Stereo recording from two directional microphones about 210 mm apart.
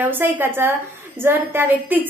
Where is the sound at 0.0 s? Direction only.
10° right (ahead or behind).